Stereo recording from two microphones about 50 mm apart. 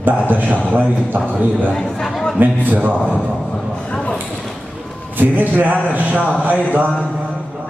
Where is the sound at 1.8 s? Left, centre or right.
Centre.